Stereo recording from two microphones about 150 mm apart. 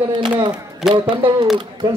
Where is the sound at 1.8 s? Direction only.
30° right (ahead or behind).